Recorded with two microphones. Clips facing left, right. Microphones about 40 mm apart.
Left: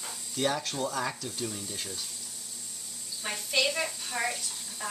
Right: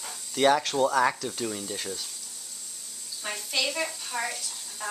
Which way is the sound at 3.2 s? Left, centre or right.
Centre.